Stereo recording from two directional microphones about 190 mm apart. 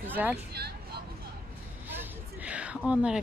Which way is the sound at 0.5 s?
60° right (ahead or behind).